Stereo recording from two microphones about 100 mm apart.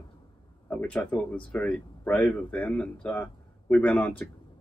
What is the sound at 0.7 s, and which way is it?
Speech, 15° left (ahead or behind).